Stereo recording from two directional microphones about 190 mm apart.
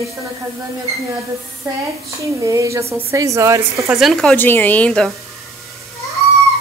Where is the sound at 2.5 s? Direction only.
15° right (ahead or behind).